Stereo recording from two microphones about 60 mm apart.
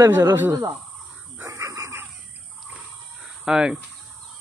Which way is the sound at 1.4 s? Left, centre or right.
Right.